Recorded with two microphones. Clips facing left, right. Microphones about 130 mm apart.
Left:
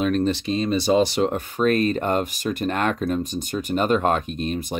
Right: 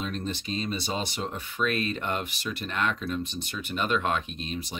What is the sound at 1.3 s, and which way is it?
Speech, 40° left (ahead or behind).